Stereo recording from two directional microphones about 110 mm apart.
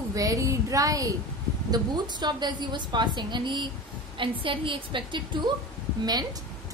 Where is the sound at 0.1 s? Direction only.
35° right (ahead or behind).